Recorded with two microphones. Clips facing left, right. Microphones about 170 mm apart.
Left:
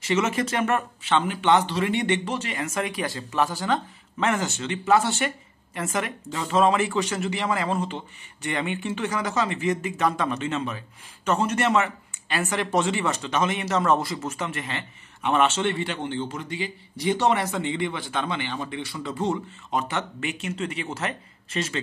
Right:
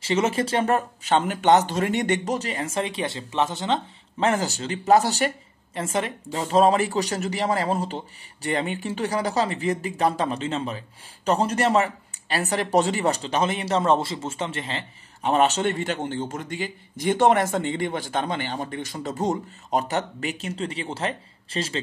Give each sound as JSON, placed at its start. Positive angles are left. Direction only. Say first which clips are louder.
{"t": 0.0, "sound": "speech", "louder": "right 1 dB", "side_deg": -30}